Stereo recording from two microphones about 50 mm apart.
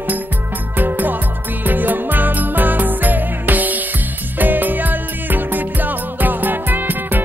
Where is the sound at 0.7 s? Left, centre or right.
Right.